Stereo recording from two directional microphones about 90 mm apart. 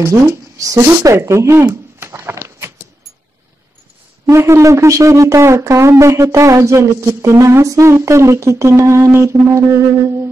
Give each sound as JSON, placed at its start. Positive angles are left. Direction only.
{"t": 0.0, "sound": "speech", "side_deg": -35}
{"t": 4.3, "sound": "speech", "side_deg": -30}